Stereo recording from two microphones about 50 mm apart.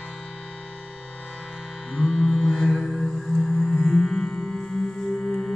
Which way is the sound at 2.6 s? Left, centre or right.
Centre.